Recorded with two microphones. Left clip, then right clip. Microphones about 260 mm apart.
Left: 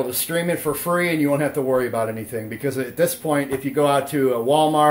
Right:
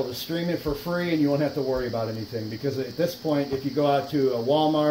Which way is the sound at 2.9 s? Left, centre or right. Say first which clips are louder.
Left 6 dB; left.